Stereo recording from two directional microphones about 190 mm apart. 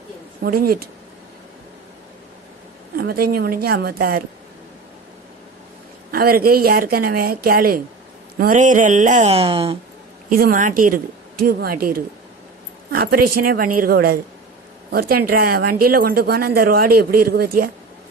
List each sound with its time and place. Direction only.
0.4 s speech: 50° right (ahead or behind)
3.0 s speech: 50° right (ahead or behind)
6.1 s speech: 50° right (ahead or behind); by 9.8 s 30° right (ahead or behind)
10.3 s speech: 45° right (ahead or behind)